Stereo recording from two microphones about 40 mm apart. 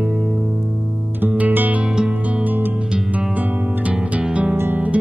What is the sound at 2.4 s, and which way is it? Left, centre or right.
Music, right.